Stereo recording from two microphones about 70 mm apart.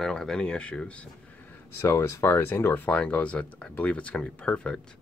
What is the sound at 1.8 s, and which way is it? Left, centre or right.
Speech, left.